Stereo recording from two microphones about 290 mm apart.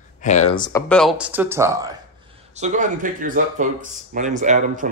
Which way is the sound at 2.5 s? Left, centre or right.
Right.